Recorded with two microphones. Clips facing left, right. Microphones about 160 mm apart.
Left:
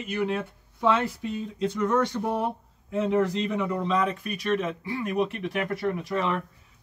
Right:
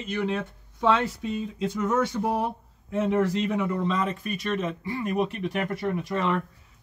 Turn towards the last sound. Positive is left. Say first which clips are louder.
# right 1 dB
turn(degrees=0)  # may be behind; listen again after turning